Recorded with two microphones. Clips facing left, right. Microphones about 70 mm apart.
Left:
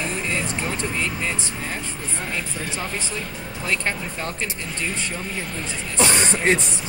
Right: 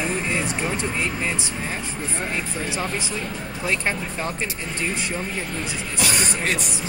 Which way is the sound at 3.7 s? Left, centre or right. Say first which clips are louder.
Right 1 dB; centre.